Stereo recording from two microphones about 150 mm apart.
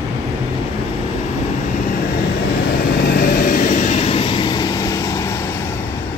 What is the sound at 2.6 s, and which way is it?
Vehicle, 90° left.